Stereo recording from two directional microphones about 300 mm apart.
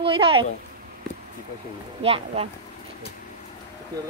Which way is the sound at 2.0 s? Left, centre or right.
Centre.